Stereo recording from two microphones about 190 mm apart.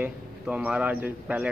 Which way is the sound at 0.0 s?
5° right (ahead or behind).